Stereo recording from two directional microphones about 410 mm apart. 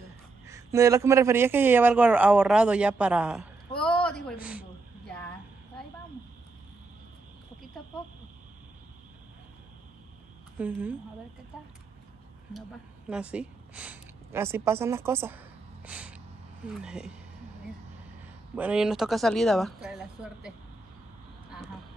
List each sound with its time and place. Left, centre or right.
0.5 s a man's voice: centre
10.6 s speech: centre
13.1 s speech: centre
18.5 s speech: centre